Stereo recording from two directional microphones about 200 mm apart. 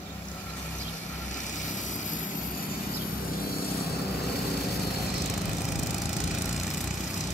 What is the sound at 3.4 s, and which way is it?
Vehicle, 50° left (ahead or behind).